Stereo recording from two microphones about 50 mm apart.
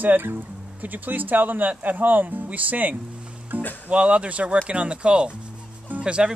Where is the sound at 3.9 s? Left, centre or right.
Right.